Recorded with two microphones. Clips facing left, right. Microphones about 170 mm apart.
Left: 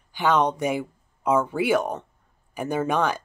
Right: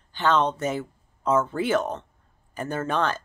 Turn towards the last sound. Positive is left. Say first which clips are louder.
# left 2 dB
turn(degrees=10)  # may be behind; listen again after turning